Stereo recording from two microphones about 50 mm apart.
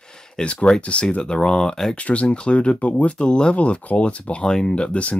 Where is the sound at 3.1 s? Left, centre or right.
Centre.